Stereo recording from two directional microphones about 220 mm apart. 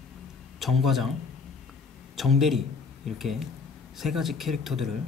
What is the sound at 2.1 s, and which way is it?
Speech, centre (ahead or behind).